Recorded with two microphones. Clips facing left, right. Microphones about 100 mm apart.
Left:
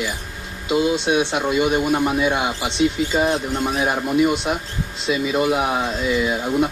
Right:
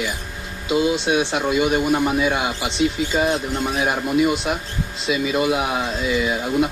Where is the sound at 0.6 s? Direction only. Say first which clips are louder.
Even; 20° left (ahead or behind).